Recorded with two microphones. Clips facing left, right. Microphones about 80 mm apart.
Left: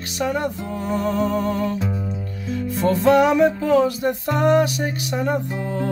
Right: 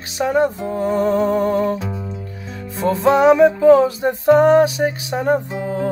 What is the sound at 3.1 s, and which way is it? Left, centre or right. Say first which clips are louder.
Music: right 3 dB; right.